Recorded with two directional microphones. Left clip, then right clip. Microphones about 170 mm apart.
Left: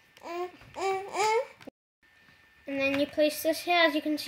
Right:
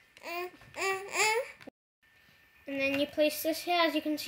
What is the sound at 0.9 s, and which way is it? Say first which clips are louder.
Speech: left 1 dB; 10° left (ahead or behind).